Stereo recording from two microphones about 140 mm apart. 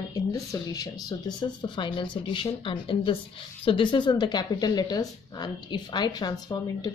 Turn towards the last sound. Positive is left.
turn(degrees=30)  # may be behind; listen again after turning